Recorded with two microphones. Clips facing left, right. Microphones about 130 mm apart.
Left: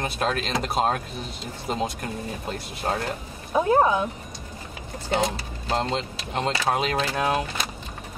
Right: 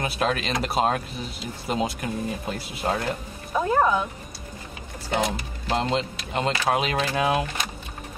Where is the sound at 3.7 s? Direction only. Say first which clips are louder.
Left 1 dB; 20° left (ahead or behind).